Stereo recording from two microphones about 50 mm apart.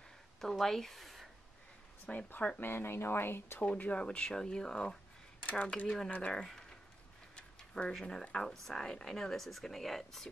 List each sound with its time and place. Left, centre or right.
0.4 s speech: centre
2.0 s speech: left
2.6 s speech: left
3.7 s speech: left
6.0 s speech: left
6.3 s speech: centre
7.3 s a sound: centre
7.9 s speech: centre